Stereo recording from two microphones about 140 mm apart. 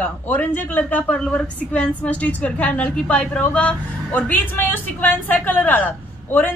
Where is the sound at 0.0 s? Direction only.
10° left (ahead or behind).